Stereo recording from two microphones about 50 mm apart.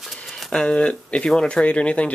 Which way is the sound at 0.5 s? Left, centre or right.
Left.